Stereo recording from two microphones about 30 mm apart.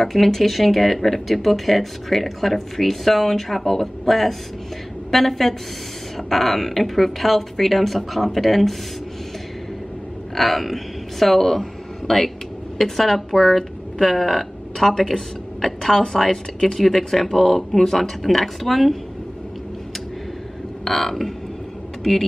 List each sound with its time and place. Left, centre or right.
0.0 s speech: centre
10.3 s a woman's voice: centre
16.3 s a woman's voice: left
16.7 s speech: centre
18.0 s speech: centre
20.8 s speech: centre